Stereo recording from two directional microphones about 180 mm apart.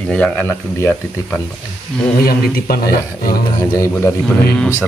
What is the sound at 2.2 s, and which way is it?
Speech, 55° left (ahead or behind).